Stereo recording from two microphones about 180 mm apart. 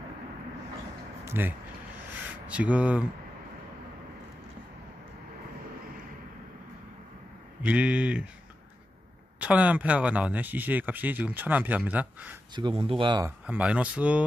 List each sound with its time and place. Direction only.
1.2 s a sound: 10° right (ahead or behind)
2.4 s speech: 5° right (ahead or behind)
7.6 s speech: 5° right (ahead or behind)
9.4 s speech: 5° right (ahead or behind)
12.5 s speech: 30° right (ahead or behind)
13.5 s speech: 5° right (ahead or behind)